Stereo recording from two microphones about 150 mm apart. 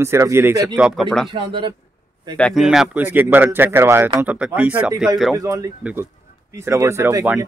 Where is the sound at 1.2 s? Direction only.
35° right (ahead or behind).